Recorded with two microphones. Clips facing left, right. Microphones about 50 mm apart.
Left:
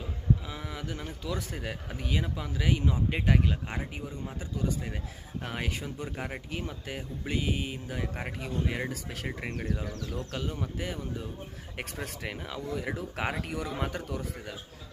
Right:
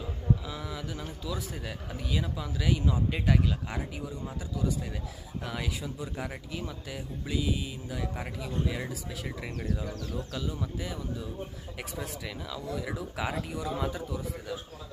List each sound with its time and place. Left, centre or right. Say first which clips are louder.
0.5 s speech: even; left
6.1 s speech: even; left
10.3 s speech: even; left